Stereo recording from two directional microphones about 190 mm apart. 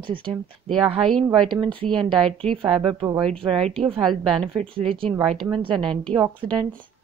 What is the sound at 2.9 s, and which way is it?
Speech, 30° right (ahead or behind).